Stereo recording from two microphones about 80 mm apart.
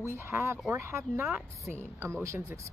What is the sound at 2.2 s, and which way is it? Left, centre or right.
Speech, right.